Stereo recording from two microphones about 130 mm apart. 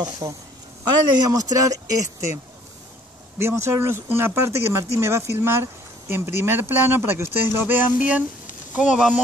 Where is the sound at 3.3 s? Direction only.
20° right (ahead or behind).